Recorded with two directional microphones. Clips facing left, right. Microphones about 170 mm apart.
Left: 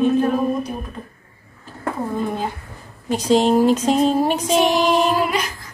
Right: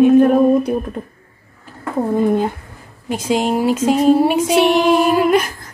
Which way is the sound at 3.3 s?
10° right (ahead or behind).